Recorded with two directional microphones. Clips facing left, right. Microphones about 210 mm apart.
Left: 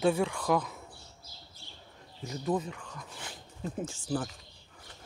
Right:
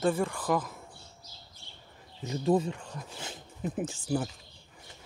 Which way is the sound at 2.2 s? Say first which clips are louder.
Right 5 dB; 30° right (ahead or behind).